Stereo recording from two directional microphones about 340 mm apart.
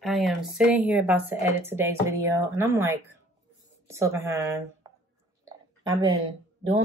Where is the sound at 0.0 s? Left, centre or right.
Centre.